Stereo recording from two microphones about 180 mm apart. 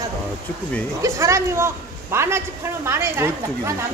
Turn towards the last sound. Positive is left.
turn(degrees=-15)  # may be behind; listen again after turning